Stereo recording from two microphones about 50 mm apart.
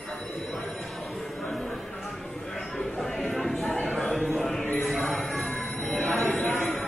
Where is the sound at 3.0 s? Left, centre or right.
Centre.